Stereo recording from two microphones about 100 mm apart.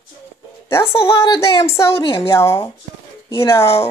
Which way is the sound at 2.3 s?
25° left (ahead or behind).